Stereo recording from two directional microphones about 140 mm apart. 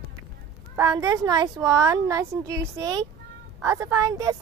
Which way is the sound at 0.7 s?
25° right (ahead or behind).